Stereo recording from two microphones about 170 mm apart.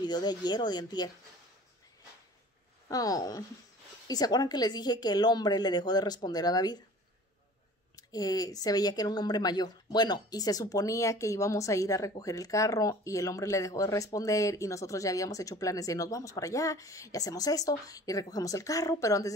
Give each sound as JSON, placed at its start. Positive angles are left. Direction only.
{"t": 0.0, "sound": "speech", "side_deg": 25}
{"t": 2.9, "sound": "speech", "side_deg": 20}
{"t": 7.9, "sound": "speech", "side_deg": 20}